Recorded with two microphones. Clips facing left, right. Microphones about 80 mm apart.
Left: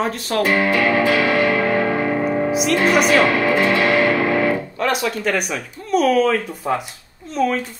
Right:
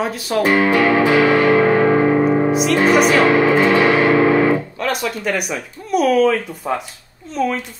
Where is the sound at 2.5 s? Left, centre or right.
Centre.